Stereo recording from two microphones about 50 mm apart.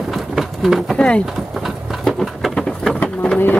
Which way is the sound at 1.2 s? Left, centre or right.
Centre.